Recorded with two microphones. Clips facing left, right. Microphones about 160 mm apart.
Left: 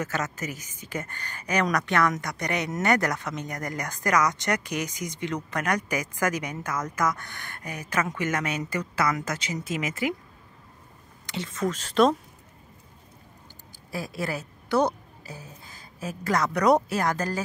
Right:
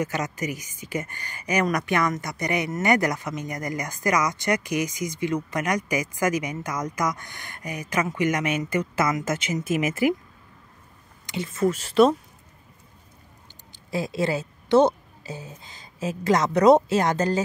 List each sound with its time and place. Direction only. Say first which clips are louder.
0.0 s speech: right 3 dB; 15° right (ahead or behind)
11.2 s speech: right 5 dB; 10° right (ahead or behind)
13.8 s a woman's voice: right 6 dB; 25° right (ahead or behind)